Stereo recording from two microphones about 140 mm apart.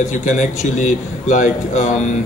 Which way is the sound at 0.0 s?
60° left (ahead or behind).